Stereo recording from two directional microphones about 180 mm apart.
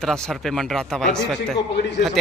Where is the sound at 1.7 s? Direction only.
75° left (ahead or behind).